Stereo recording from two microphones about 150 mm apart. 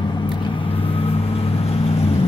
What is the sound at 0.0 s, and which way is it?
Vehicle, 30° left (ahead or behind).